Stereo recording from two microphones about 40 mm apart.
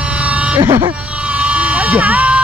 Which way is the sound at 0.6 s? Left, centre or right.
Right.